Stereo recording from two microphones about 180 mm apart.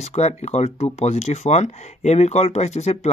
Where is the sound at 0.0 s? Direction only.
40° left (ahead or behind).